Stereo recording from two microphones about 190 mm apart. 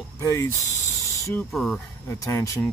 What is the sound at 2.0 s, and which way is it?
Speech, 15° left (ahead or behind).